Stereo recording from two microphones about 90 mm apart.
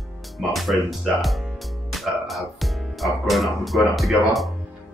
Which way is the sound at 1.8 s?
Centre (ahead or behind).